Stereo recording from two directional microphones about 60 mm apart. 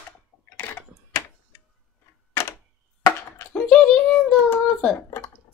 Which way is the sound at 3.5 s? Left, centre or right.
Centre.